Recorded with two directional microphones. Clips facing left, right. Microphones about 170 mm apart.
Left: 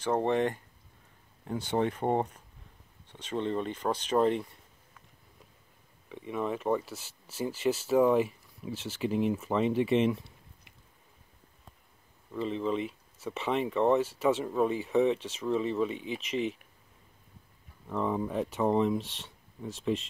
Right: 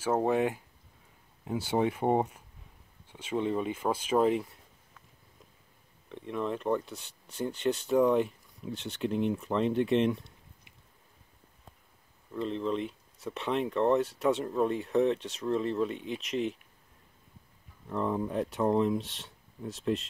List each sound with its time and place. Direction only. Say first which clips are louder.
0.0 s speech: even; 5° right (ahead or behind)
6.0 s speech: even; 5° left (ahead or behind)
12.4 s speech: left 1 dB; centre (ahead or behind)
17.8 s speech: even; centre (ahead or behind)